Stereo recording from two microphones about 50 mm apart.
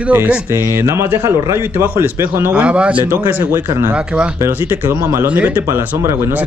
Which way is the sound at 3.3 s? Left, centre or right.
Right.